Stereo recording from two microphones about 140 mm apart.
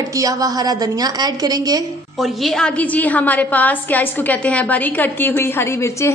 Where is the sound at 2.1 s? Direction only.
Centre (ahead or behind).